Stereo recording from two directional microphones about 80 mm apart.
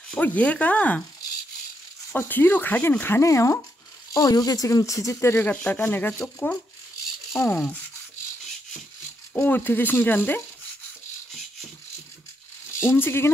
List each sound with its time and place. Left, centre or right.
0.2 s speech: centre
2.1 s speech: left
3.2 s speech: left
4.1 s speech: left
5.4 s speech: left
7.3 s speech: left
9.3 s speech: left
12.8 s speech: left